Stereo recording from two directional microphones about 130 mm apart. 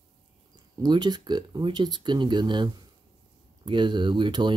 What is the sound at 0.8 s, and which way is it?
Speech, 35° right (ahead or behind).